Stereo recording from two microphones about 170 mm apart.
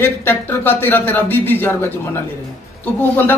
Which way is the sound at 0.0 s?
15° left (ahead or behind).